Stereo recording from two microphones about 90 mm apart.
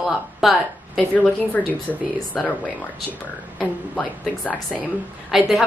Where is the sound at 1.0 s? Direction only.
15° left (ahead or behind).